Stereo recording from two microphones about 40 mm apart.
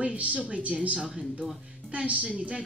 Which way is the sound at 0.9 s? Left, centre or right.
Centre.